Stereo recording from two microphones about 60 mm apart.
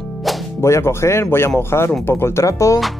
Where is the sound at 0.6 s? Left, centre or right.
Left.